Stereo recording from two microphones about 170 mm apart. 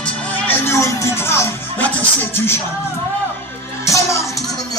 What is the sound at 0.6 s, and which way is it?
Music, 15° left (ahead or behind).